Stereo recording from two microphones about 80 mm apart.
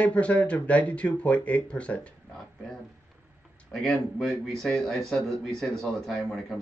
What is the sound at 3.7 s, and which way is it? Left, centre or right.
A man's voice, centre.